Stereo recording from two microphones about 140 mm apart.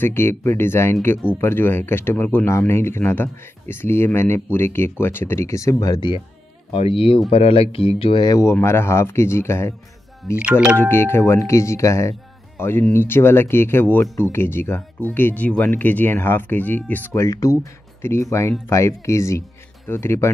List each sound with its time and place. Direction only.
0.0 s speech: 15° left (ahead or behind)
10.4 s speech: 10° right (ahead or behind)
10.8 s speech: 15° left (ahead or behind)